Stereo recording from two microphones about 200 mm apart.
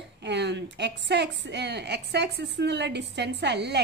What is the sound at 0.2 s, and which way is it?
A woman's voice, 60° right (ahead or behind).